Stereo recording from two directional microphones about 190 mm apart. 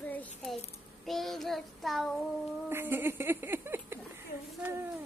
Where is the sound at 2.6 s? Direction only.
10° right (ahead or behind).